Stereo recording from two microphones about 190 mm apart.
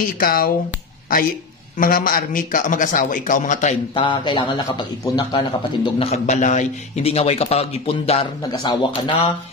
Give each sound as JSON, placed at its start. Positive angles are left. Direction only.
{"t": 0.0, "sound": "a man's voice", "side_deg": 50}
{"t": 1.8, "sound": "a man's voice", "side_deg": 50}
{"t": 3.9, "sound": "a man's voice", "side_deg": 25}
{"t": 5.9, "sound": "speech", "side_deg": 35}